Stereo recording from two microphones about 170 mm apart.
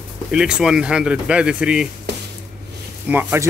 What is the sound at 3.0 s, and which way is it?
Speech, 15° right (ahead or behind).